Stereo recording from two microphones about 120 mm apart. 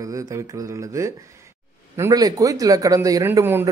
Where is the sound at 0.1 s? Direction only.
30° right (ahead or behind).